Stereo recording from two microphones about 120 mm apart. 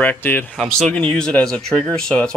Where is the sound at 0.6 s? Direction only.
5° left (ahead or behind).